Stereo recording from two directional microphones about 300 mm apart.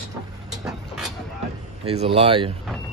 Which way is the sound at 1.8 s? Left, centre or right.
Centre.